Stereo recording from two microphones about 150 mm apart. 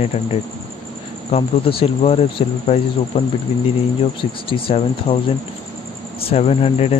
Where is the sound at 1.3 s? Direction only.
40° left (ahead or behind).